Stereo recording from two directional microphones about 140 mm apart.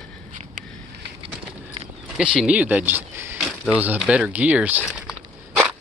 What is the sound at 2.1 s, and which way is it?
Speech, 5° right (ahead or behind).